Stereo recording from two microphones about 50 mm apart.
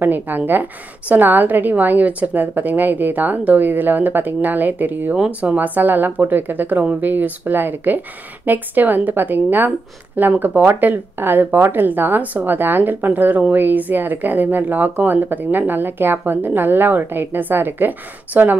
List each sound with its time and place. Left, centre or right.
0.0 s a woman's voice: right